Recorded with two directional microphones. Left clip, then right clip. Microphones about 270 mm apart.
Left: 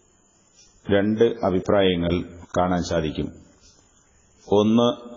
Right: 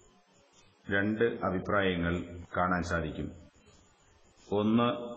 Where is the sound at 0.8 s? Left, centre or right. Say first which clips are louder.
Left 10 dB; centre.